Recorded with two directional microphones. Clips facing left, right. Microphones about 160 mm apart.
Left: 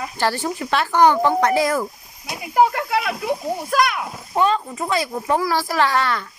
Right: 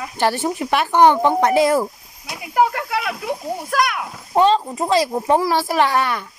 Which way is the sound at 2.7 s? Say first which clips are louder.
Left 1 dB; centre (ahead or behind).